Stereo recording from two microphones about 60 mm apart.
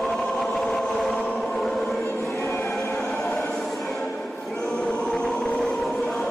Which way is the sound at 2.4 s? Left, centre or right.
Left.